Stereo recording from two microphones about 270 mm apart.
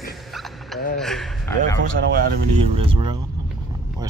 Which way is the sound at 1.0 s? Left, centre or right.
Centre.